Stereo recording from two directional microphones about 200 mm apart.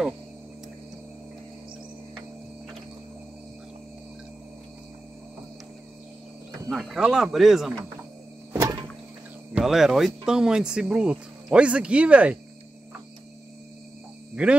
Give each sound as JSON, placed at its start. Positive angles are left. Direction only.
{"t": 6.7, "sound": "speech", "side_deg": 0}
{"t": 8.5, "sound": "a sound", "side_deg": -15}
{"t": 9.5, "sound": "speech", "side_deg": -5}
{"t": 14.3, "sound": "cricket", "side_deg": -5}